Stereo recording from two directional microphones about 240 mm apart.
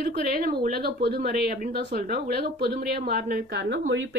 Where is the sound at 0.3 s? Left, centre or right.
Right.